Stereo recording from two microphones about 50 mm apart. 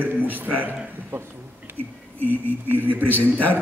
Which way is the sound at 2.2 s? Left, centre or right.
Left.